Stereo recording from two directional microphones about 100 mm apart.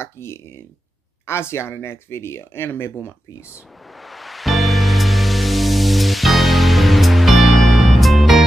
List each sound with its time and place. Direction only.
0.0 s speech: 25° left (ahead or behind)
4.0 s music: centre (ahead or behind)